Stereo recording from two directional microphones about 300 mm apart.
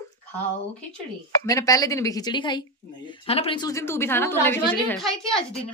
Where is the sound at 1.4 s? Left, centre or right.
Centre.